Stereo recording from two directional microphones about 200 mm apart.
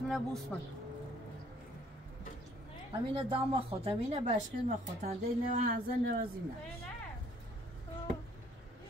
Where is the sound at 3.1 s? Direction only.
25° right (ahead or behind); by 6.1 s 45° right (ahead or behind).